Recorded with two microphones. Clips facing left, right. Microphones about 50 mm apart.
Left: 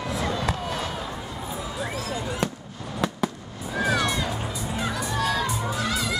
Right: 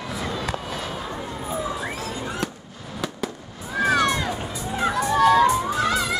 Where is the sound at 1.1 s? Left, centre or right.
Centre.